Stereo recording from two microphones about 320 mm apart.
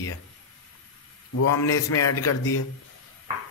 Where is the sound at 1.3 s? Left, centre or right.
Left.